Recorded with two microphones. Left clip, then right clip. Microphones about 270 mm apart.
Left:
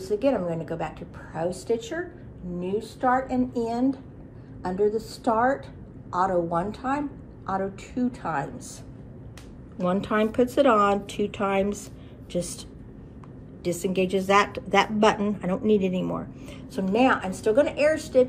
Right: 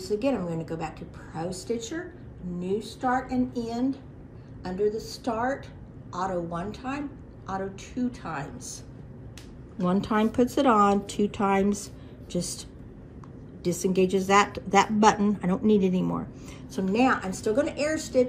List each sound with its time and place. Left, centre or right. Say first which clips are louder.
0.0 s a woman's voice: left 3 dB; centre
2.6 s a woman's voice: left 3 dB; centre
9.8 s a woman's voice: left 2 dB; centre
13.8 s a woman's voice: even; centre